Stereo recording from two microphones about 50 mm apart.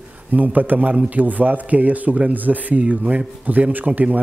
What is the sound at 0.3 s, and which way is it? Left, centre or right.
A man's voice, right.